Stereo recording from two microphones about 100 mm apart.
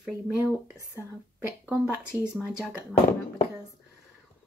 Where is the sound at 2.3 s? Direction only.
5° right (ahead or behind).